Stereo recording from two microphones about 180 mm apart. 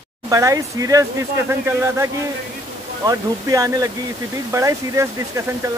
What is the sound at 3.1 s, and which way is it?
Speech, 20° right (ahead or behind).